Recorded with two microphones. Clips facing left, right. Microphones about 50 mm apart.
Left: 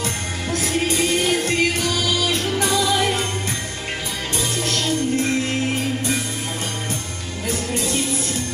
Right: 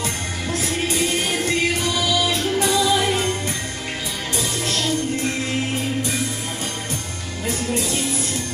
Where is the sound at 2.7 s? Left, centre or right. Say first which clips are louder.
Even; left.